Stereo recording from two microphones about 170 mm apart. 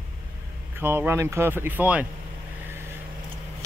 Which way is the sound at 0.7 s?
10° right (ahead or behind).